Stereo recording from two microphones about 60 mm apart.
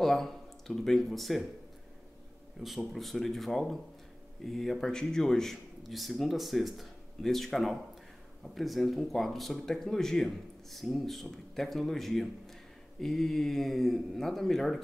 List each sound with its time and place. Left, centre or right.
0.0 s speech: centre
2.9 s speech: centre